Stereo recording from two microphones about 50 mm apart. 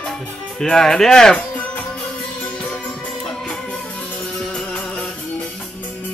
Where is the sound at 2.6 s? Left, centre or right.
Left.